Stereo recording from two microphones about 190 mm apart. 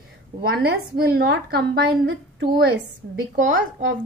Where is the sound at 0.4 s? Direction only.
55° right (ahead or behind).